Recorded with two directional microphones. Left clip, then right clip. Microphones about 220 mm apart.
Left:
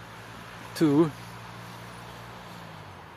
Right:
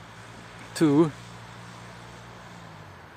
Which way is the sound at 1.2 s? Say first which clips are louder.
Left 2 dB; 25° left (ahead or behind).